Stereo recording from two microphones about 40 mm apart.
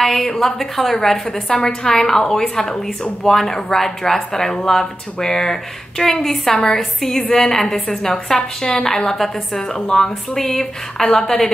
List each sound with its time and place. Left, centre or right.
0.0 s a woman's voice: centre
1.5 s speech: centre